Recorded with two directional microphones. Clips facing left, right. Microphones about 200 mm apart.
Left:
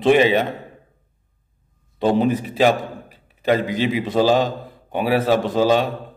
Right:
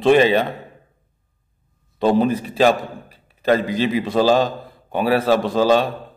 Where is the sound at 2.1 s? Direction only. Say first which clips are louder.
Right 1 dB; 20° left (ahead or behind).